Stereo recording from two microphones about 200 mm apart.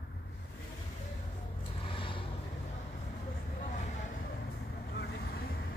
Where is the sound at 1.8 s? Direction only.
25° left (ahead or behind).